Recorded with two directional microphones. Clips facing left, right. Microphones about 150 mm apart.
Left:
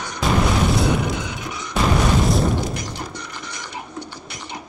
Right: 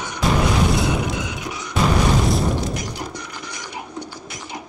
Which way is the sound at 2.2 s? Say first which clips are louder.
Left 1 dB; centre (ahead or behind).